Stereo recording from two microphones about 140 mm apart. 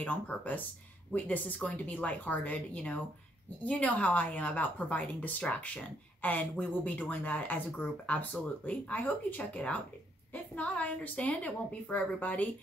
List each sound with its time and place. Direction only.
0.0 s a woman's voice: 10° left (ahead or behind)